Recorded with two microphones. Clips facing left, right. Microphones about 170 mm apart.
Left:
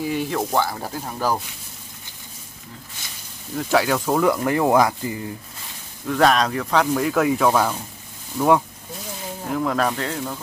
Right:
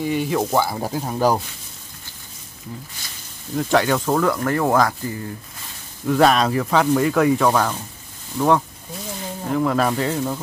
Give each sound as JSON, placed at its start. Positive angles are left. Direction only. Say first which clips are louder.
{"t": 0.0, "sound": "speech", "louder": "right 3 dB", "side_deg": 0}
{"t": 3.5, "sound": "speech", "louder": "right 2 dB", "side_deg": 5}
{"t": 6.0, "sound": "speech", "louder": "right 2 dB", "side_deg": -5}